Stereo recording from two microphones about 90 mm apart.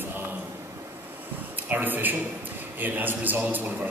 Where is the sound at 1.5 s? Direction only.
20° right (ahead or behind).